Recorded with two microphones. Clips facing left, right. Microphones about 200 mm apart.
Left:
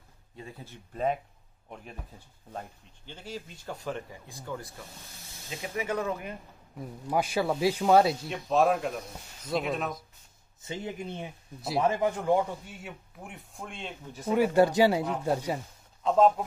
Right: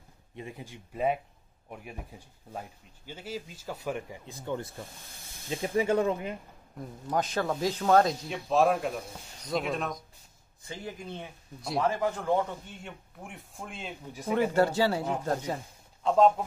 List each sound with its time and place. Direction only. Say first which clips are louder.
0.4 s speech: right 3 dB; 15° right (ahead or behind)
6.8 s speech: left 1 dB; 10° left (ahead or behind)
10.6 s a man's voice: left 4 dB; 20° left (ahead or behind); by 14.2 s 5° right (ahead or behind)
14.2 s a man's voice: left 2 dB; 10° left (ahead or behind)